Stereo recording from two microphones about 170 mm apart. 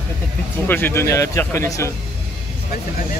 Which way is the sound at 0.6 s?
10° left (ahead or behind).